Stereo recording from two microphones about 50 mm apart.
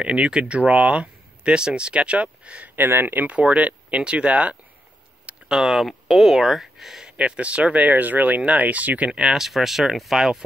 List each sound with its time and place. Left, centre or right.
0.0 s speech: right
2.7 s speech: right
3.3 s speech: right
5.5 s speech: centre
7.2 s speech: right
9.2 s speech: centre